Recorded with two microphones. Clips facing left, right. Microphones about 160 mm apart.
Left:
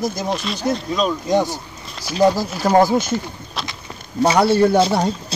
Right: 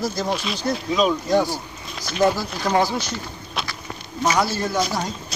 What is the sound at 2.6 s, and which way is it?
Speech, 45° left (ahead or behind).